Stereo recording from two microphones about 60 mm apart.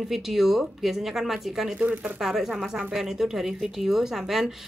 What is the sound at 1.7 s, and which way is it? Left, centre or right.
Speech, right.